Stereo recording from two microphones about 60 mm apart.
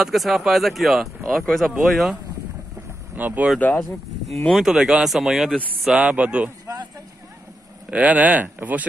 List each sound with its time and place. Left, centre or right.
0.0 s speech: centre
3.2 s speech: right
3.5 s speech: left
4.5 s speech: centre; by 6.5 s right
7.9 s speech: right